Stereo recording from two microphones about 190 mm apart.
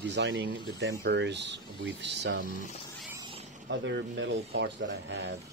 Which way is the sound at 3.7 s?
70° right (ahead or behind).